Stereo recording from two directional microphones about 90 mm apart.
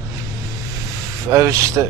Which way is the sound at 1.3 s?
35° right (ahead or behind).